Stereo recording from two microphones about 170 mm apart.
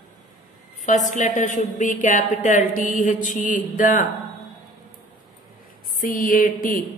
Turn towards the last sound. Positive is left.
turn(degrees=55)  # may be behind; listen again after turning